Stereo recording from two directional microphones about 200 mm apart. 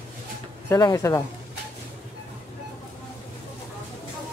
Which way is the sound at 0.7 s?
15° left (ahead or behind).